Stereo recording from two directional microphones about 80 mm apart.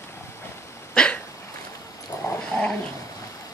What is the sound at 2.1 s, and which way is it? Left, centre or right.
Dog, left.